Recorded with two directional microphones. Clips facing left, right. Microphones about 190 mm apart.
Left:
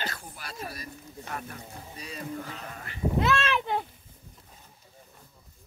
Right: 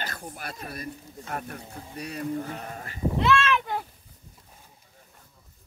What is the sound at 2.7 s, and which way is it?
Speech, 40° right (ahead or behind).